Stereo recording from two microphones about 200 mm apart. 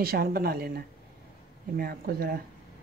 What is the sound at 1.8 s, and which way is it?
Speech, 50° right (ahead or behind).